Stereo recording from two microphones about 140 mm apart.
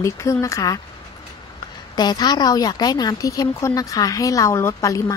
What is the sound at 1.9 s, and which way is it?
Speech, 30° left (ahead or behind).